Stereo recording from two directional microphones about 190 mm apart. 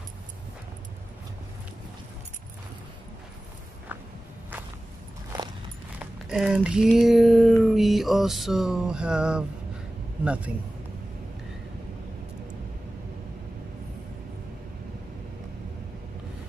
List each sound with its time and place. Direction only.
5.9 s a man's voice: 5° right (ahead or behind)